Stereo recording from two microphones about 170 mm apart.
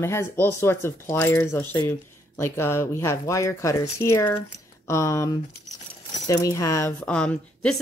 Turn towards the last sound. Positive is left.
turn(degrees=5)  # may be behind; listen again after turning